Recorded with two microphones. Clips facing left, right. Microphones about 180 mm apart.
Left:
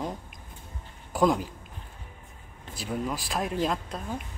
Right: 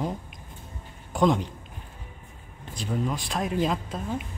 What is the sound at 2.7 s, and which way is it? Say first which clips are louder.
Speech: right 2 dB; 5° left (ahead or behind).